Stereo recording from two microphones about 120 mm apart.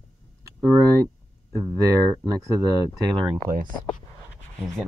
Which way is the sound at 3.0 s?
40° right (ahead or behind).